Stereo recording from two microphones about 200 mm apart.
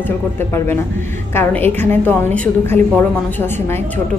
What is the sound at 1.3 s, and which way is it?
A woman's voice, 10° left (ahead or behind).